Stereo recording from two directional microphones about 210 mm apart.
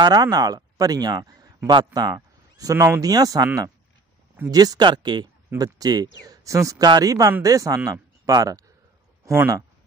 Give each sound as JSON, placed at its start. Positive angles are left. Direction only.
{"t": 0.0, "sound": "a man's voice", "side_deg": -20}